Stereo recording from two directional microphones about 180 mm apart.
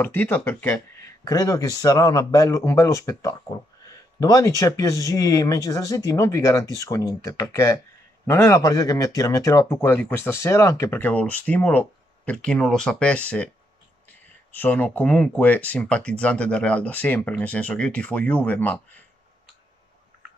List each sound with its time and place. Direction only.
0.0 s speech: 10° left (ahead or behind)
14.5 s speech: 10° left (ahead or behind)